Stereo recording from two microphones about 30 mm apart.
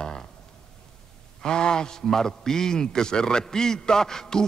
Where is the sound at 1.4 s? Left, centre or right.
Left.